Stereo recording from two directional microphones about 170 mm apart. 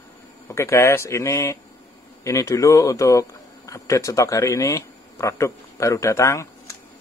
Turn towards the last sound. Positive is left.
turn(degrees=20)  # may be behind; listen again after turning